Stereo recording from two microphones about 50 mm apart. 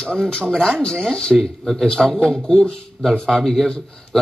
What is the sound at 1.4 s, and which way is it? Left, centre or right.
Speech, centre.